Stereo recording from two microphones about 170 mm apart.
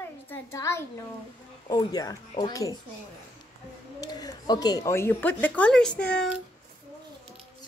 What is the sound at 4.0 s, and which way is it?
Speech, 20° left (ahead or behind).